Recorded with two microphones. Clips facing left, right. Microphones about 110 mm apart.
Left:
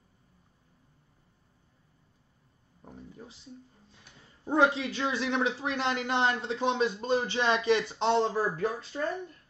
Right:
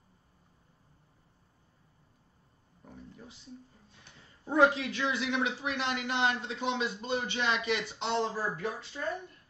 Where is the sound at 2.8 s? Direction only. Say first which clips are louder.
Left 2 dB; 30° left (ahead or behind).